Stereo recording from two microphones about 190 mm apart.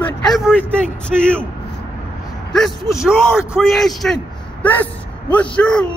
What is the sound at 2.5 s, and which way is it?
Speech, centre (ahead or behind).